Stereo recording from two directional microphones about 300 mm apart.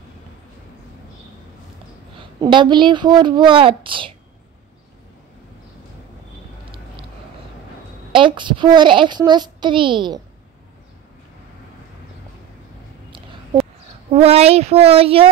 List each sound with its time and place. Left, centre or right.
2.1 s a child's voice: centre
8.1 s a child's voice: centre
13.1 s a sound: centre
14.1 s speech: centre